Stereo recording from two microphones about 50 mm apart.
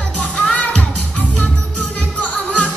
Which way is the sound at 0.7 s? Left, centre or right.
Centre.